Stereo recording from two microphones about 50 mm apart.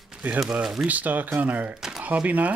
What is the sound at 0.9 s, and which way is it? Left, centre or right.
Speech, right.